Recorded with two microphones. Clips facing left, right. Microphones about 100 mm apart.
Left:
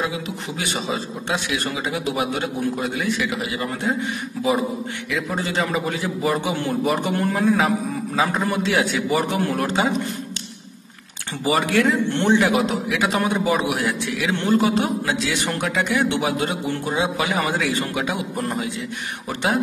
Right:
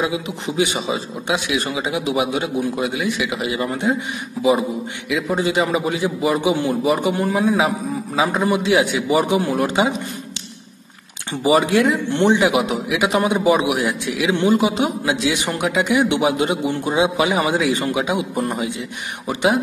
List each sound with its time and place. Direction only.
0.1 s a man's voice: 15° right (ahead or behind)
3.3 s a man's voice: 20° right (ahead or behind)
5.1 s a man's voice: 10° right (ahead or behind)
11.4 s a man's voice: 15° right (ahead or behind)